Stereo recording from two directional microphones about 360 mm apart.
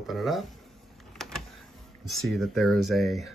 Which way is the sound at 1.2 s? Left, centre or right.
Centre.